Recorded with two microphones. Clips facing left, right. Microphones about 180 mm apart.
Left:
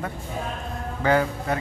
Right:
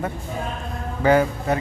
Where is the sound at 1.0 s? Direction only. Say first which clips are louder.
Right 4 dB; 20° right (ahead or behind).